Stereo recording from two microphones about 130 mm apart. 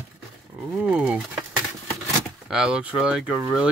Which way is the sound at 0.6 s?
10° right (ahead or behind).